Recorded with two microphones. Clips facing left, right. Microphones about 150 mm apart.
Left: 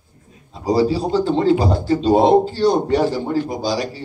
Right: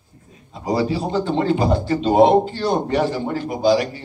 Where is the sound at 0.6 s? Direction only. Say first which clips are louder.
Left 4 dB; 30° left (ahead or behind).